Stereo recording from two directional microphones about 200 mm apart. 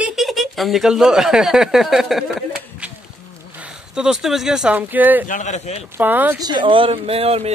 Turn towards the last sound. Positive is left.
turn(degrees=-30)  # may be behind; listen again after turning